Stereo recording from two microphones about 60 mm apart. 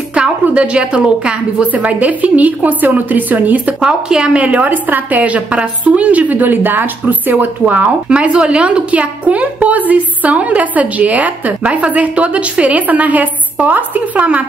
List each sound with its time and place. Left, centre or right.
0.1 s a woman's voice: centre
3.8 s a woman's voice: centre